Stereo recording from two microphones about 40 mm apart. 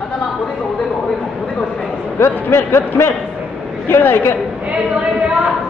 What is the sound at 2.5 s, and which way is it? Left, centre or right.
Speech, left.